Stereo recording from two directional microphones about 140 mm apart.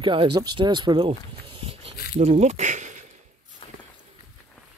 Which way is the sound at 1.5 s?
40° right (ahead or behind).